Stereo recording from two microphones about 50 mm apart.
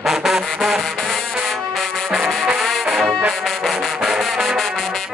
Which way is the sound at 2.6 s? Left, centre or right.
Centre.